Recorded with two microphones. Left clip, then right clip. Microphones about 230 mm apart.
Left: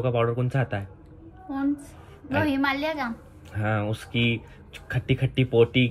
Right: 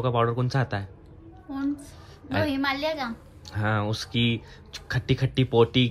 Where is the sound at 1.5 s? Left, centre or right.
Centre.